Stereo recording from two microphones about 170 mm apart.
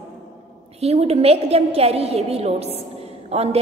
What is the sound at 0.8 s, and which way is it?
A woman's voice, 35° right (ahead or behind).